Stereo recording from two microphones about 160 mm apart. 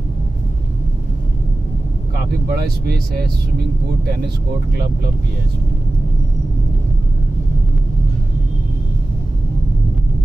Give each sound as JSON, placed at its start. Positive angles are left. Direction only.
{"t": 2.4, "sound": "speech", "side_deg": -75}